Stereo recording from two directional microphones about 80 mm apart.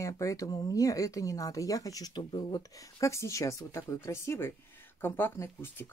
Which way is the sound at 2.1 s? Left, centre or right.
Left.